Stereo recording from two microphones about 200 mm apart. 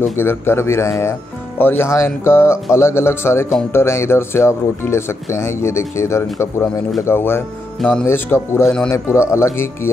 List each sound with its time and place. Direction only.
0.2 s speech: 10° left (ahead or behind)